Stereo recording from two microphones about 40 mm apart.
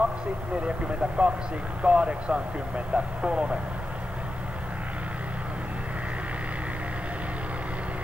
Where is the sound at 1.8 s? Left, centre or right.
Right.